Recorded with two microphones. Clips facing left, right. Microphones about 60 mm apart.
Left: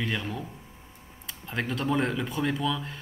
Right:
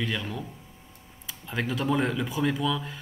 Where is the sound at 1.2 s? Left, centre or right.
Centre.